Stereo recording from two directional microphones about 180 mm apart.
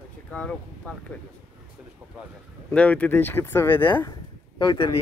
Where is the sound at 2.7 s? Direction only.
10° left (ahead or behind).